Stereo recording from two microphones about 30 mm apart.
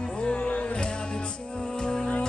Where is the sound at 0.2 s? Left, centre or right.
Left.